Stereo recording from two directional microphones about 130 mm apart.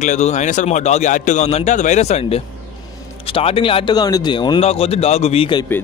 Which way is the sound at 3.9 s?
30° left (ahead or behind).